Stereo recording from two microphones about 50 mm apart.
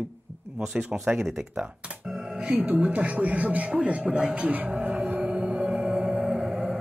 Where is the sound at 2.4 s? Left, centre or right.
Centre.